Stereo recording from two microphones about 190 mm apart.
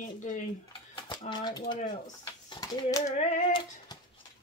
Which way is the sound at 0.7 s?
25° left (ahead or behind).